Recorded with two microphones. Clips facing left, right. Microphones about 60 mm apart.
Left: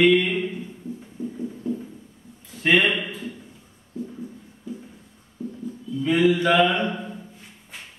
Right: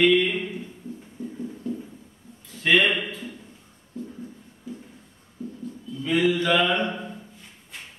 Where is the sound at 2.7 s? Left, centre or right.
Centre.